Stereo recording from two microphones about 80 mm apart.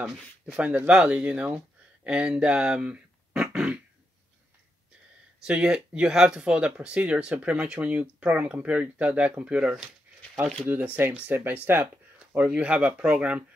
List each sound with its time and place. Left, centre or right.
0.0 s speech: centre
5.4 s speech: centre
10.6 s speech: right